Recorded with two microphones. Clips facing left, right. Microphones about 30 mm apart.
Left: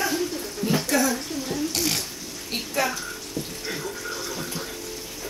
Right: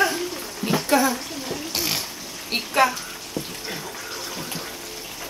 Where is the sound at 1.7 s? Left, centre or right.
Centre.